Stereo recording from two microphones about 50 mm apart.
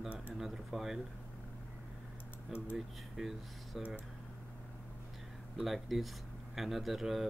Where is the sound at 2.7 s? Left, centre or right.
Centre.